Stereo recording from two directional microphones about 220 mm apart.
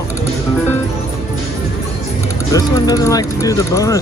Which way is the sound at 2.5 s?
15° left (ahead or behind).